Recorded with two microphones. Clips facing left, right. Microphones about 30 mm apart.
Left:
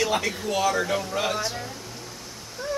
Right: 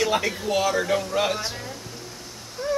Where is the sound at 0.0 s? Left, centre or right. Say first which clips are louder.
Right 2 dB; centre.